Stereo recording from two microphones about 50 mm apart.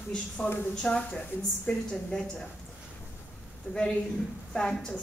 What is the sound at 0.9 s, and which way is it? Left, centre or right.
Speech, left.